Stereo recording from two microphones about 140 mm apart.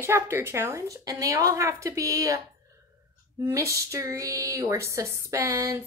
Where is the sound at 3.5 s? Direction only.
20° right (ahead or behind).